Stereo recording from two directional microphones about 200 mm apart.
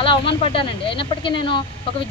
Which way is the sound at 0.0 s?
25° left (ahead or behind).